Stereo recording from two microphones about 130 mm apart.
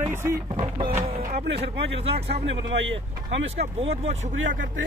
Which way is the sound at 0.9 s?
75° right (ahead or behind).